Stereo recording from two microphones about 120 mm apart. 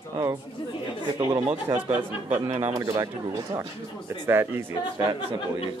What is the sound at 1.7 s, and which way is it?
Speech, 15° right (ahead or behind).